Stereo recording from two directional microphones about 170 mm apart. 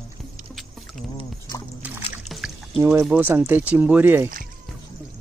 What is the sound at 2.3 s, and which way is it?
Pour, centre (ahead or behind).